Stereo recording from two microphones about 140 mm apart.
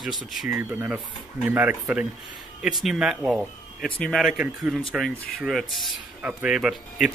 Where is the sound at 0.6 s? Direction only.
15° right (ahead or behind).